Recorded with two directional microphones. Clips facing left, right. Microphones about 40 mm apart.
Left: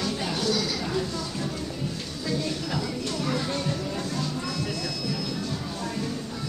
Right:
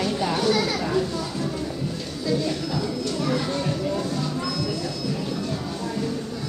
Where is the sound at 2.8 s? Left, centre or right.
Centre.